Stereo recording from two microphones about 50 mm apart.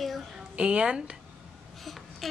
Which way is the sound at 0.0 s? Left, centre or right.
Centre.